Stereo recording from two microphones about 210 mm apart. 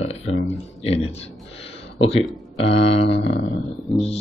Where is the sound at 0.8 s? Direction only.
30° left (ahead or behind).